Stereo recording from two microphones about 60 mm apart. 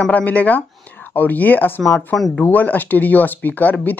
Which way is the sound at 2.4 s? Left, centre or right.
Left.